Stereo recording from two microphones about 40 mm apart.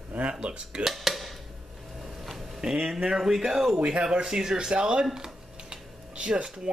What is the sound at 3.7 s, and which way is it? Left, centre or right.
Speech, right.